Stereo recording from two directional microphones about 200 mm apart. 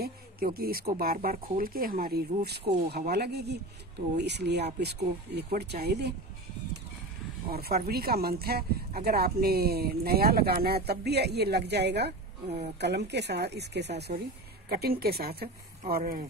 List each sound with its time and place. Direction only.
0.0 s speech: 50° right (ahead or behind)
7.5 s speech: 50° right (ahead or behind)